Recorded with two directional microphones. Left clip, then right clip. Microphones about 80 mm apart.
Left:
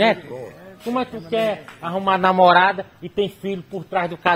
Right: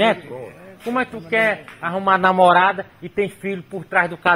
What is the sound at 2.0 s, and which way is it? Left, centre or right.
Speech, centre.